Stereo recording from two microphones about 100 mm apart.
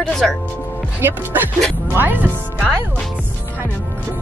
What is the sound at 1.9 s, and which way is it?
Speech, 20° right (ahead or behind).